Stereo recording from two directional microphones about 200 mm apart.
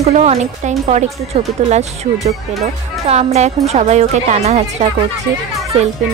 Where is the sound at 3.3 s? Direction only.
35° right (ahead or behind).